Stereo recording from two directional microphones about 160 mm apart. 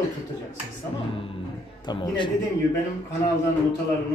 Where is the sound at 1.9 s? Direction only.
30° left (ahead or behind).